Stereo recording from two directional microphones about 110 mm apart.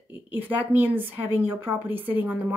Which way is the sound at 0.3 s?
15° right (ahead or behind).